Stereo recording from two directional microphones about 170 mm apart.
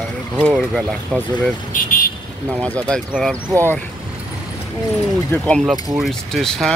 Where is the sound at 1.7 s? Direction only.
55° left (ahead or behind).